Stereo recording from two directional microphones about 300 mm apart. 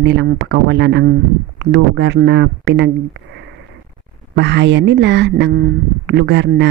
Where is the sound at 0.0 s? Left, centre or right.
Right.